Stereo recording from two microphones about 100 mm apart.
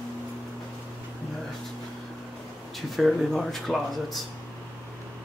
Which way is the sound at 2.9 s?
Centre (ahead or behind).